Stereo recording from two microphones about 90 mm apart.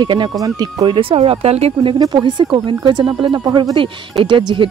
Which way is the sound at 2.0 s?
55° right (ahead or behind).